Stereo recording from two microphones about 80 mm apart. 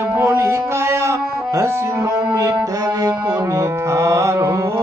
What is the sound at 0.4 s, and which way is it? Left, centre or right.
Music, right.